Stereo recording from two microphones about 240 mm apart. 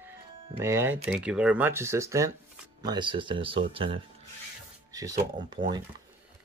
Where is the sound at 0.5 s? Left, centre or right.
Centre.